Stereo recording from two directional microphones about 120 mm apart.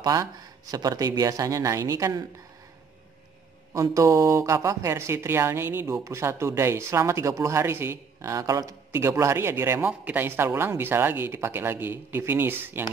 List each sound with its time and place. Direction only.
0.0 s speech: 30° right (ahead or behind)
3.7 s speech: 25° right (ahead or behind)